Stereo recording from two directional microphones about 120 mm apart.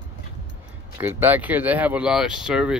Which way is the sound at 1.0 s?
15° right (ahead or behind).